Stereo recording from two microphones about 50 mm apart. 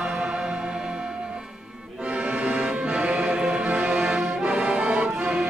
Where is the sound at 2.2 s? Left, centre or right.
Right.